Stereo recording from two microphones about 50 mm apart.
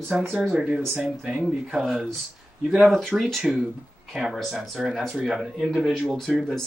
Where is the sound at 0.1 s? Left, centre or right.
Right.